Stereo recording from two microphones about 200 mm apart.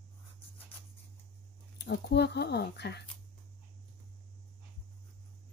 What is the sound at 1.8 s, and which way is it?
Speech, 55° left (ahead or behind).